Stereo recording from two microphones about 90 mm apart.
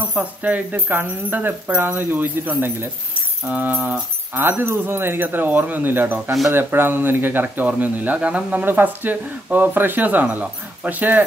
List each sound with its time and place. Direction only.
0.1 s speech: 15° right (ahead or behind)